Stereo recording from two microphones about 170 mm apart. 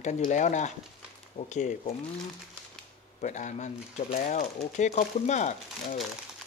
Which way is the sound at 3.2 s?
45° left (ahead or behind).